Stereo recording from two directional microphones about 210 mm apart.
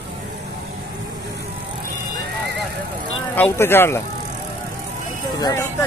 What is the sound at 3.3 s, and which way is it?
Speech, 10° left (ahead or behind).